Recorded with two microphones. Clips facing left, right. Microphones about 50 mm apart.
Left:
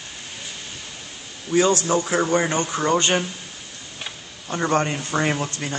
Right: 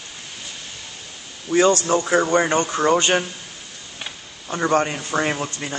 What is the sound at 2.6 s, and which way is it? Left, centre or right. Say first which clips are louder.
Speech: right 2 dB; centre.